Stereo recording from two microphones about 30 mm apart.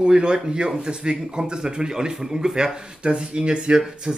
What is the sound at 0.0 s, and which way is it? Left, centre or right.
Speech, right.